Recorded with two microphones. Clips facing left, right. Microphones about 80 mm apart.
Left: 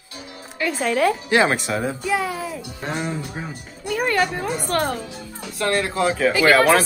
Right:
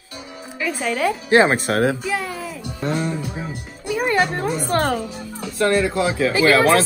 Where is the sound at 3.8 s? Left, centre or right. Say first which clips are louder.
Right 1 dB; centre.